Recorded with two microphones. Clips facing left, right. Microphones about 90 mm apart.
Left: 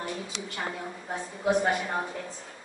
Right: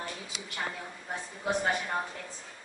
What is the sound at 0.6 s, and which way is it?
A woman's voice, 10° left (ahead or behind).